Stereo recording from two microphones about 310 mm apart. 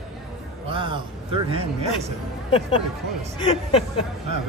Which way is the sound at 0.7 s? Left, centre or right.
Centre.